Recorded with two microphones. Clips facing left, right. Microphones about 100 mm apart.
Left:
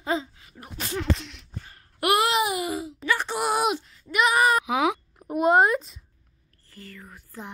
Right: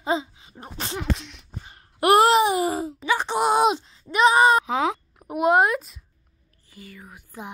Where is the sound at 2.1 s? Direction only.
40° right (ahead or behind).